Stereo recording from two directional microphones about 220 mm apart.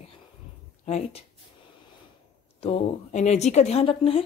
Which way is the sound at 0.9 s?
30° left (ahead or behind).